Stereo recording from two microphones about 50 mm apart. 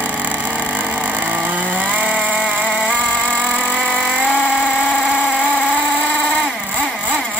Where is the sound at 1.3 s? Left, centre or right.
Right.